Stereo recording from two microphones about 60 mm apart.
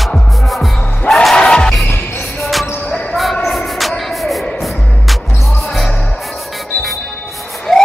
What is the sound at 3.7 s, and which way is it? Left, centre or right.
Music, centre.